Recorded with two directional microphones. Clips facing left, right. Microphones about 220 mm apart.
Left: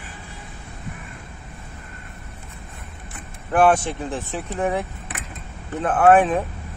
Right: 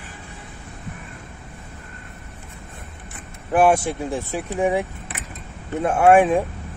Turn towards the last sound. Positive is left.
turn(degrees=-15)  # may be behind; listen again after turning